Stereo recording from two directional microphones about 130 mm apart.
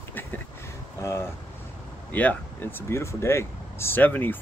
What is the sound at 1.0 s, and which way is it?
Speech, 20° left (ahead or behind).